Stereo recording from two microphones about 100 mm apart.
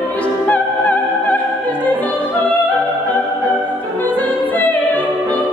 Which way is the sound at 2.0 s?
15° left (ahead or behind).